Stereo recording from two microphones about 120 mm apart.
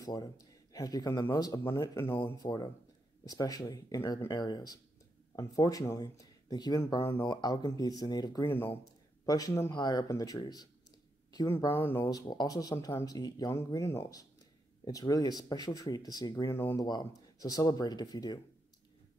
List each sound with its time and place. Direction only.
0.0 s a man's voice: 35° left (ahead or behind)
2.3 s speech: 30° left (ahead or behind)
4.3 s speech: 35° left (ahead or behind)
7.2 s speech: 35° left (ahead or behind)
8.5 s speech: 20° left (ahead or behind)
9.2 s speech: 30° left (ahead or behind)
11.7 s speech: 20° left (ahead or behind)
12.1 s speech: 35° left (ahead or behind)
16.5 s speech: 20° left (ahead or behind)
16.8 s speech: 30° left (ahead or behind)